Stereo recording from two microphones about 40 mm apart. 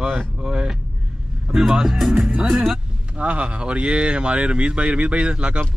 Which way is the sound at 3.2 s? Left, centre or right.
Right.